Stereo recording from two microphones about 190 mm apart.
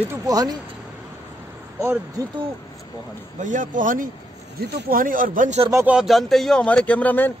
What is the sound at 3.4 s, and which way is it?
Speech, 40° right (ahead or behind).